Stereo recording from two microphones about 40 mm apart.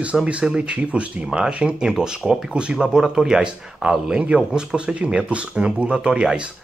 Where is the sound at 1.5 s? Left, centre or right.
Right.